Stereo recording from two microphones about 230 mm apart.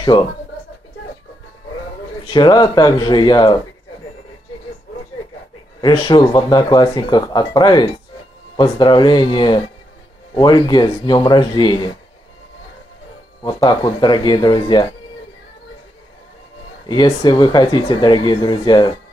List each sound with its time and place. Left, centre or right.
2.2 s speech: centre
5.8 s speech: centre
13.4 s speech: centre
16.8 s speech: centre